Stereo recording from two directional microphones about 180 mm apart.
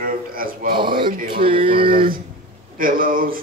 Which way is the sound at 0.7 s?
25° right (ahead or behind).